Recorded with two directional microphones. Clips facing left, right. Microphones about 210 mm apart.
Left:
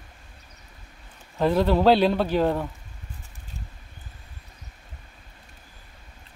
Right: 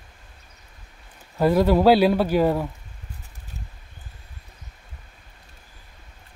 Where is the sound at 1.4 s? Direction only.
10° right (ahead or behind).